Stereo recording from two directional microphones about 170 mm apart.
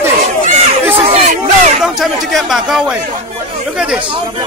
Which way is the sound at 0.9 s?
40° right (ahead or behind).